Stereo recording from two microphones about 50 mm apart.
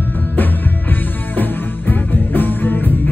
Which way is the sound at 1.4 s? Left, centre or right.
Left.